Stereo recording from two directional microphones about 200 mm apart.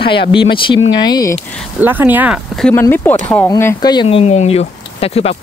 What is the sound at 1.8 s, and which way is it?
Speech, 10° right (ahead or behind).